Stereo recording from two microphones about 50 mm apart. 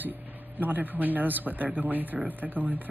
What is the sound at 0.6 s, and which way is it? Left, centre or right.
Speech, right.